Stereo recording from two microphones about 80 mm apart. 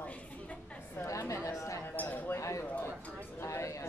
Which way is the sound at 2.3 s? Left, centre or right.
Left.